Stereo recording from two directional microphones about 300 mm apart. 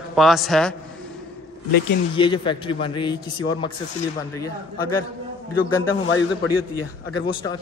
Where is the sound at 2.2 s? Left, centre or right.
Centre.